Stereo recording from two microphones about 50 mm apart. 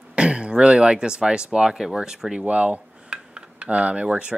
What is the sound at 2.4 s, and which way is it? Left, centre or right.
Speech, right.